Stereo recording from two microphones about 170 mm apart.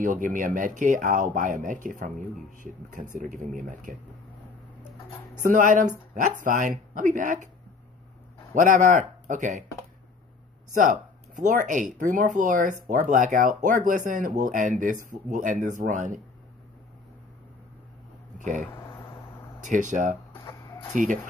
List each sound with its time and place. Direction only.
0.0 s speech: 50° right (ahead or behind)
5.4 s speech: 50° right (ahead or behind)
8.5 s speech: 50° right (ahead or behind)
10.7 s speech: 50° right (ahead or behind)
18.4 s speech: 50° right (ahead or behind)
20.4 s chicken: 25° left (ahead or behind)
20.9 s speech: 50° right (ahead or behind)